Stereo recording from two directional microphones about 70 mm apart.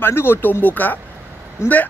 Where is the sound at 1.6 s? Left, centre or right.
Left.